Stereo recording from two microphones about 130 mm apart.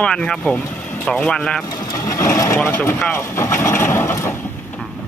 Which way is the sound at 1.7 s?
30° left (ahead or behind).